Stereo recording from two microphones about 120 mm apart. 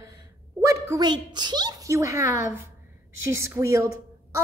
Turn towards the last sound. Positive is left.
turn(degrees=-25)  # may be behind; listen again after turning